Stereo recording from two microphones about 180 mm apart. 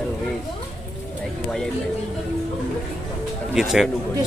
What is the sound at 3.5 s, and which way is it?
Speech, centre (ahead or behind).